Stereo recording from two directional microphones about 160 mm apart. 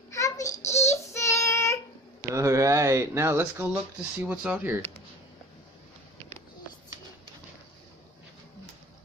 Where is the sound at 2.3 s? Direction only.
20° right (ahead or behind).